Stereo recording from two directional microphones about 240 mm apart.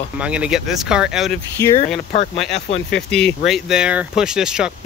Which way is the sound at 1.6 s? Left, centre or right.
Centre.